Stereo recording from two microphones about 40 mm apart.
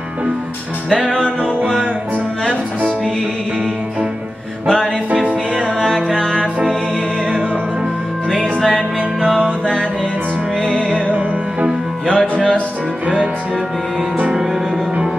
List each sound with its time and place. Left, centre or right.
5.8 s music: centre
8.5 s music: centre
11.1 s music: right
12.1 s music: centre